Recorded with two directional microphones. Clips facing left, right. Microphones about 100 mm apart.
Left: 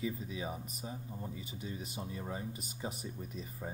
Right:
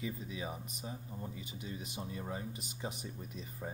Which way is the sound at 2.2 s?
25° left (ahead or behind).